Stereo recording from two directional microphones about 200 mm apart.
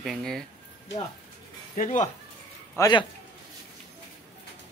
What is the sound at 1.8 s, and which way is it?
Speech, 40° left (ahead or behind).